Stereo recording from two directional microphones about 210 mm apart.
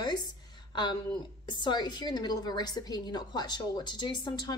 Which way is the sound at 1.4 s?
20° left (ahead or behind).